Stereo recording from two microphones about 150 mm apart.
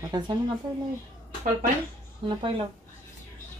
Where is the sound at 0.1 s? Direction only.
25° right (ahead or behind).